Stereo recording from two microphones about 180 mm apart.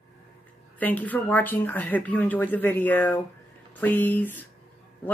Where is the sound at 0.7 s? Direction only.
10° left (ahead or behind).